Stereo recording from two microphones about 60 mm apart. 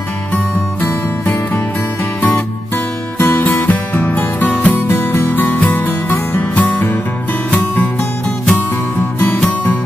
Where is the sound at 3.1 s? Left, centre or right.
Left.